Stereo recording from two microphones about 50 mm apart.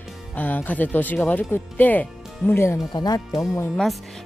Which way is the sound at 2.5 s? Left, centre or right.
Left.